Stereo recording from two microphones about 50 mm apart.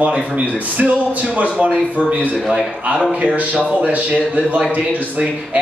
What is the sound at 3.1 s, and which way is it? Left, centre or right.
Speech, right.